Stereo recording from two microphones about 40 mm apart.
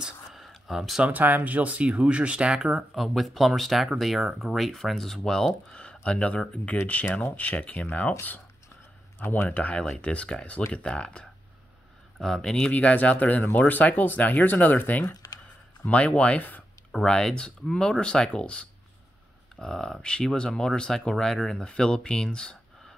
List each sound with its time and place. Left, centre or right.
0.3 s a sound: centre
1.0 s speech: right
2.9 s speech: centre
5.7 s speech: left
9.2 s speech: left
9.5 s speech: left
9.8 s speech: left
12.4 s speech: centre
12.7 s speech: left
15.8 s speech: left
16.9 s speech: centre
19.5 s speech: centre